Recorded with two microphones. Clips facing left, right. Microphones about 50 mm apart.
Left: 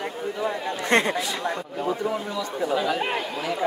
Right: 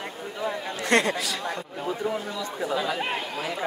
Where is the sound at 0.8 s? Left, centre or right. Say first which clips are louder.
Left 1 dB; left.